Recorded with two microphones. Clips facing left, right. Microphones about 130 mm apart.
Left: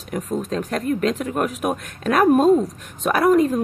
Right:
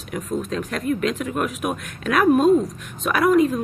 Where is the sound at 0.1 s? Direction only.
35° left (ahead or behind).